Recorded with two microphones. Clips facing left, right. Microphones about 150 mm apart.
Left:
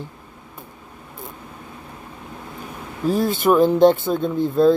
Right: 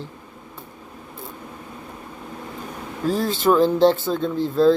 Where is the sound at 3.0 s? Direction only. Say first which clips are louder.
Left 2 dB; 15° left (ahead or behind).